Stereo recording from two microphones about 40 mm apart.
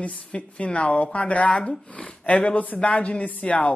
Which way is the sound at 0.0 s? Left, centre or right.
Left.